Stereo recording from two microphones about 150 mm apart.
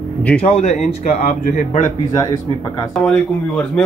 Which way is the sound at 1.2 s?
65° left (ahead or behind).